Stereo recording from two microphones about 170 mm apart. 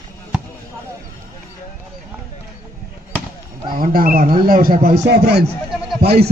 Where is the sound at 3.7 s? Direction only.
60° right (ahead or behind).